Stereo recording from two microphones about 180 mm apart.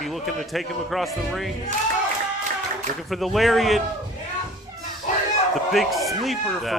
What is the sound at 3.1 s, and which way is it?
Speech, centre (ahead or behind).